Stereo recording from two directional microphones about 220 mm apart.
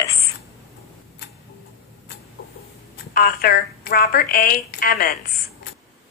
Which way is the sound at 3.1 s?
40° left (ahead or behind).